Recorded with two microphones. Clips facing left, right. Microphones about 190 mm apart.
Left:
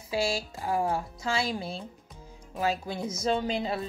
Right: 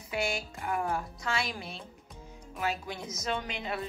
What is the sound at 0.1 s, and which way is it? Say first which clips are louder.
Speech: left 4 dB; 30° left (ahead or behind).